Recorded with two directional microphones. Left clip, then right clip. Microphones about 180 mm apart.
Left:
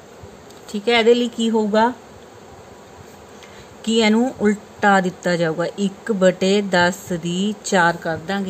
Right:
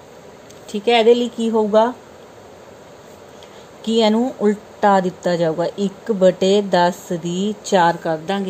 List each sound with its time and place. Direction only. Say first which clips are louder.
0.7 s speech: right 2 dB; 10° right (ahead or behind)
3.8 s speech: right 1 dB; centre (ahead or behind)